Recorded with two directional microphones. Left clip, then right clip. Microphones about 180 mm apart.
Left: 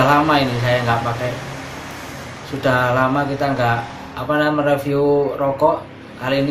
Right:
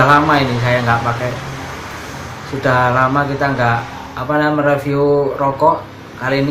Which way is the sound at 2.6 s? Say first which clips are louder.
Right 3 dB; 5° left (ahead or behind).